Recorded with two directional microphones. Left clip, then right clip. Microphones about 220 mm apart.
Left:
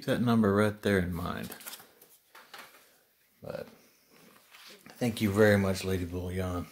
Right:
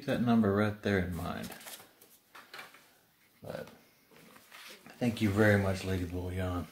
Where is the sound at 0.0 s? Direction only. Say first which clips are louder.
Left 2 dB; 45° left (ahead or behind).